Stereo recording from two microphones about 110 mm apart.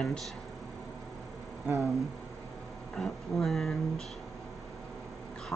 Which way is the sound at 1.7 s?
20° right (ahead or behind).